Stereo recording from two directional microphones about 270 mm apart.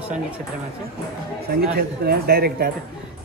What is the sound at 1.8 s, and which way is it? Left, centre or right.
Speech, right.